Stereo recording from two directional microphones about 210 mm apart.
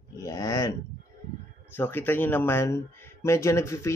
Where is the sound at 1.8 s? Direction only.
10° left (ahead or behind).